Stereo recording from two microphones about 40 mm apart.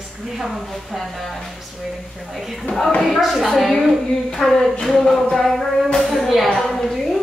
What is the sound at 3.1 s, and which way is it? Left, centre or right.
Speech, centre.